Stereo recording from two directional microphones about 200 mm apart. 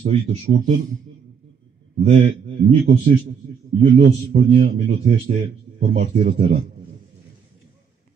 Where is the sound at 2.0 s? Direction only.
35° right (ahead or behind).